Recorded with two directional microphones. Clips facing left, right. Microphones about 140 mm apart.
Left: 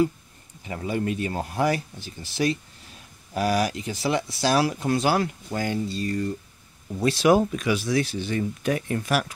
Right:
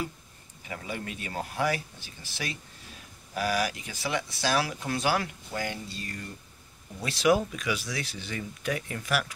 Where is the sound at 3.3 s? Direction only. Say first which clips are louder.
Left 5 dB; 30° left (ahead or behind).